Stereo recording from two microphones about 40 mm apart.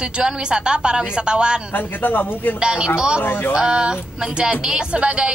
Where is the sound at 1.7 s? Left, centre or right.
Left.